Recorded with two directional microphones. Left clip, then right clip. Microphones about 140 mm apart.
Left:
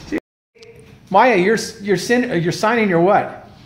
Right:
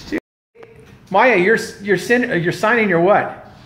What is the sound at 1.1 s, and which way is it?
Speech, 35° left (ahead or behind).